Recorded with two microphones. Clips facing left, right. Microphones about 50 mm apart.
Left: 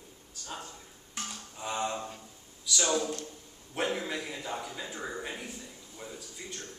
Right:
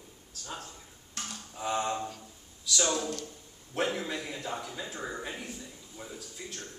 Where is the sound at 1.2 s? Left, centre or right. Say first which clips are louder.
Left 1 dB; centre.